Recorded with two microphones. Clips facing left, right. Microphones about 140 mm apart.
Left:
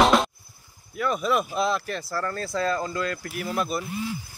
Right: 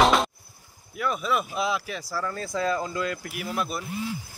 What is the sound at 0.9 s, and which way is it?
Speech, 5° right (ahead or behind).